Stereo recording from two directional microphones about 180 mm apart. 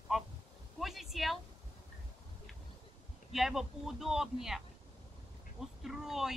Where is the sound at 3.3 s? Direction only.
Centre (ahead or behind).